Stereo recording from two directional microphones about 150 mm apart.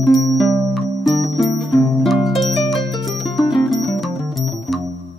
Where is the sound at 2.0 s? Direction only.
Centre (ahead or behind).